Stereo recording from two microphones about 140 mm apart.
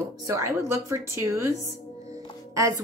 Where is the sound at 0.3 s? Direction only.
20° right (ahead or behind).